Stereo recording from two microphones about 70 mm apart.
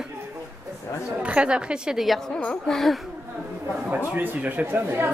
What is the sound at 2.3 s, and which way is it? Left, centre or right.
Speech, centre.